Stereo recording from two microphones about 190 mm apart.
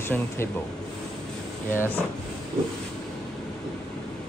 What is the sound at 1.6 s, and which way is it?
Speech, 10° left (ahead or behind).